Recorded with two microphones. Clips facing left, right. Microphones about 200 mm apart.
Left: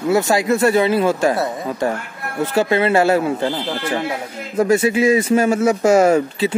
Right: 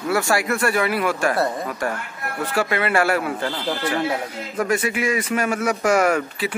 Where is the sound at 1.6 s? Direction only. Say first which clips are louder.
Left 5 dB; 20° left (ahead or behind).